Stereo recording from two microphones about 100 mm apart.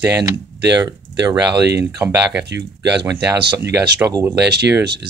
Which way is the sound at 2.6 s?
50° right (ahead or behind).